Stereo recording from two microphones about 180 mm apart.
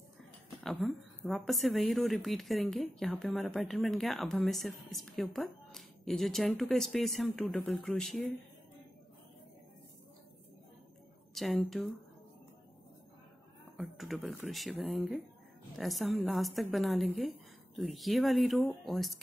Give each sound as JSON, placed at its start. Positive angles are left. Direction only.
{"t": 0.7, "sound": "a woman's voice", "side_deg": 0}
{"t": 11.3, "sound": "a woman's voice", "side_deg": 0}
{"t": 13.7, "sound": "a woman's voice", "side_deg": 0}